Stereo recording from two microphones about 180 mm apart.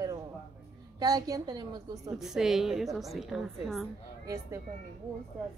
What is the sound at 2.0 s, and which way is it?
A woman's voice, centre (ahead or behind).